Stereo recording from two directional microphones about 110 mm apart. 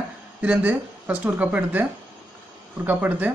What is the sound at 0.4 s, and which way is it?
Speech, 10° right (ahead or behind).